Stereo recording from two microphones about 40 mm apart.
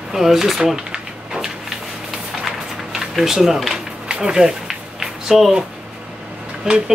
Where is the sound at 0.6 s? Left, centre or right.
Centre.